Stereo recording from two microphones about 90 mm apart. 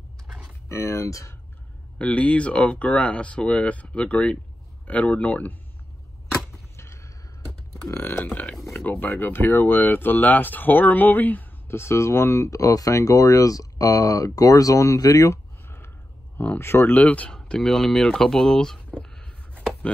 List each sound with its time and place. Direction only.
0.7 s speech: 35° left (ahead or behind)
2.0 s speech: 15° left (ahead or behind)
6.8 s a sound: 30° left (ahead or behind)
7.9 s burping: 25° left (ahead or behind)
8.3 s speech: 15° left (ahead or behind); by 15.3 s 40° left (ahead or behind)
16.3 s speech: 25° left (ahead or behind); by 18.8 s 5° left (ahead or behind)
19.0 s chopping: 5° left (ahead or behind)